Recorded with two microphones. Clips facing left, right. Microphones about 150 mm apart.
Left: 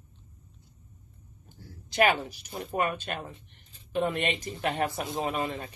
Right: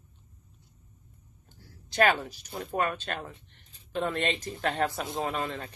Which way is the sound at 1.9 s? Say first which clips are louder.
Even; 10° left (ahead or behind).